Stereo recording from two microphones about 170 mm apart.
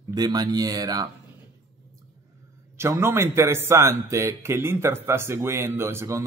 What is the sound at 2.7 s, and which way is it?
Speech, 15° right (ahead or behind).